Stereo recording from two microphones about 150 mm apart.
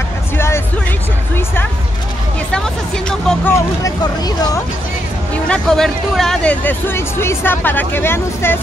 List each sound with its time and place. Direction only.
1.3 s music: 15° left (ahead or behind)
2.5 s speech: 5° left (ahead or behind)
3.5 s speech: 25° left (ahead or behind)
5.3 s speech: 5° left (ahead or behind)